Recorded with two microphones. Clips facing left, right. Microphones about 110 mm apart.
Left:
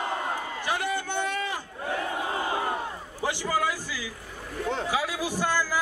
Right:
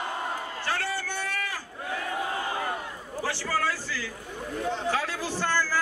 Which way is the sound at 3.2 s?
15° left (ahead or behind).